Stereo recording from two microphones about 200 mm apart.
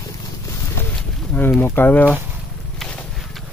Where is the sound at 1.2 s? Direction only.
10° left (ahead or behind).